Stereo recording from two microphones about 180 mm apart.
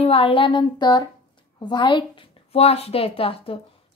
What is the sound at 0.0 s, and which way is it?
Speech, 30° left (ahead or behind).